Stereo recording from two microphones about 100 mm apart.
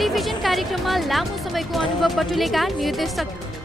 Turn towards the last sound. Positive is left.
turn(degrees=0)  # may be behind; listen again after turning